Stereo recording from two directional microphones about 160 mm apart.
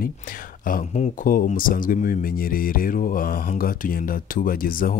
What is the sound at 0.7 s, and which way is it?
Speech, 60° left (ahead or behind).